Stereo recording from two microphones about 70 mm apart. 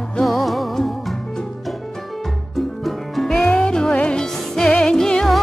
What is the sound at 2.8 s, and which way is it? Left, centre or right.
Music, centre.